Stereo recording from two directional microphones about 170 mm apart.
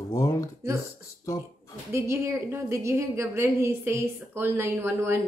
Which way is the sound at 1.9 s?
15° right (ahead or behind).